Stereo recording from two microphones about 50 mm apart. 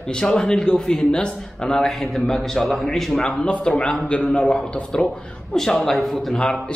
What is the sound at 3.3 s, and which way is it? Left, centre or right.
A man's voice, centre.